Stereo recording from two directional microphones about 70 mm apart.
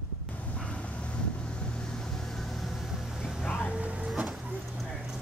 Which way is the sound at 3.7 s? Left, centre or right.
Centre.